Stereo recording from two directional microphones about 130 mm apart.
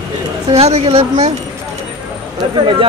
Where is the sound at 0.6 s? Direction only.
55° right (ahead or behind).